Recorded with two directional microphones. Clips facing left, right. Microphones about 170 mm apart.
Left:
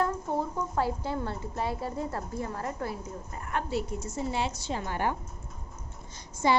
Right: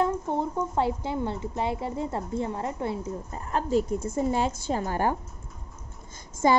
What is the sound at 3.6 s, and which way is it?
A woman's voice, 50° right (ahead or behind).